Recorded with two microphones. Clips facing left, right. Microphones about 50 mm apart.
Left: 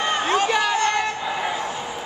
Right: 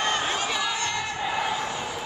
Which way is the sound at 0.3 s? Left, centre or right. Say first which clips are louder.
Left 7 dB; left.